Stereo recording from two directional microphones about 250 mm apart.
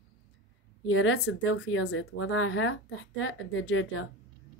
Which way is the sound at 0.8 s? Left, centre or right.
Left.